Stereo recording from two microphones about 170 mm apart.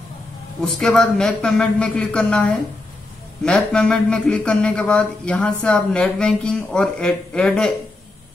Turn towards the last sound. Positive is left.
turn(degrees=5)  # may be behind; listen again after turning